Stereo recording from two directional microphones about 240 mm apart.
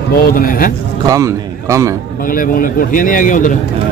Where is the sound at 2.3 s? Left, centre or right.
Left.